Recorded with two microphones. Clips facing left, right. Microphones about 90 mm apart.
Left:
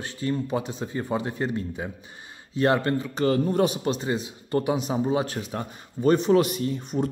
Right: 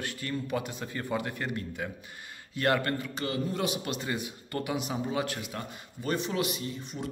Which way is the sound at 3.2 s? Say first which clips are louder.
Left 11 dB; 45° left (ahead or behind).